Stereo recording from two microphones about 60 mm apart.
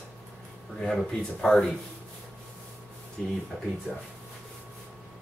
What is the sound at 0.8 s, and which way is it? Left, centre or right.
Speech, centre.